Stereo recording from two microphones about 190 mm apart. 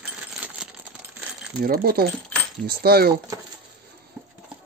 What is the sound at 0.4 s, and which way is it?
Coin, 10° right (ahead or behind).